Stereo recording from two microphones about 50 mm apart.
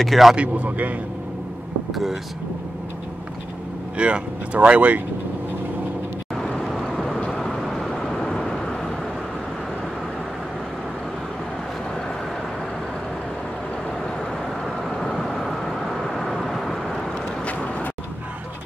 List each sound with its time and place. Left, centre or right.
0.0 s speech: centre
0.4 s speech: right
3.9 s speech: right
6.4 s vehicle: centre
14.6 s vehicle: centre
17.5 s vehicle: left